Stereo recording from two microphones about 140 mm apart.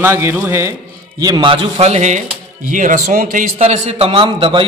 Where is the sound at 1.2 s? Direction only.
35° right (ahead or behind).